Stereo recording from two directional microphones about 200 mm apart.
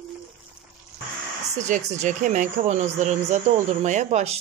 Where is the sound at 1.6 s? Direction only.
35° right (ahead or behind).